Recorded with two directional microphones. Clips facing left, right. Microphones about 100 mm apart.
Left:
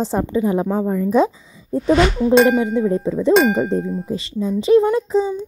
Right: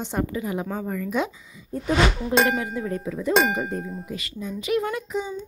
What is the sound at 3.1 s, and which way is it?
Speech, 30° left (ahead or behind).